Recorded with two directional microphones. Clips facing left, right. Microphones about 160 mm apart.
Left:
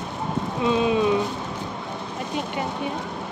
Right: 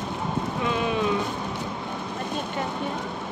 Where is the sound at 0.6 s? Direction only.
20° left (ahead or behind).